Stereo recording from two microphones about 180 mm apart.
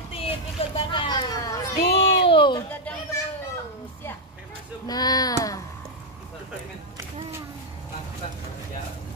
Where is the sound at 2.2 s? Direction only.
25° left (ahead or behind).